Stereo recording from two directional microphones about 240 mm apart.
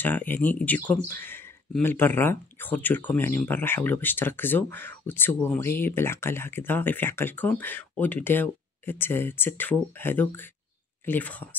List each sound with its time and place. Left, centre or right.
0.0 s speech: centre